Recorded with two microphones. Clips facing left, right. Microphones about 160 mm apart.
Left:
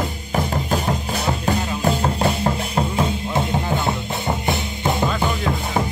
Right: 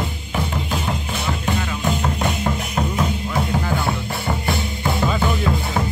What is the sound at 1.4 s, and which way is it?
Music, 35° left (ahead or behind).